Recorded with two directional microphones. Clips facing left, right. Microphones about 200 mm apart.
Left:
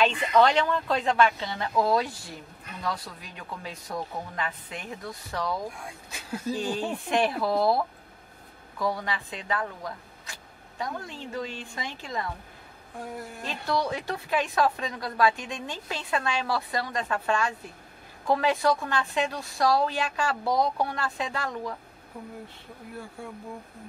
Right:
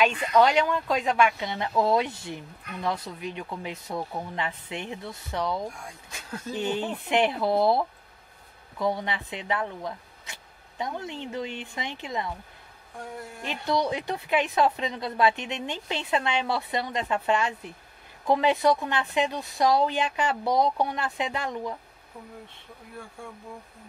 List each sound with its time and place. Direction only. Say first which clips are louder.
0.3 s speech: right 1 dB; 10° right (ahead or behind)
13.4 s speech: right 2 dB; 20° right (ahead or behind)